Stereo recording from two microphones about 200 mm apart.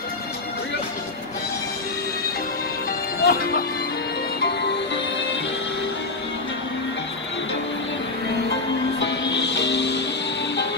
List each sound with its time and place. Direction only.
3.3 s speech: 50° left (ahead or behind)
4.4 s music: 55° left (ahead or behind)
9.0 s music: 60° left (ahead or behind)